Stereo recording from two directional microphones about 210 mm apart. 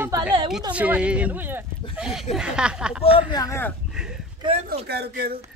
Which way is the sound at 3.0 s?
25° left (ahead or behind).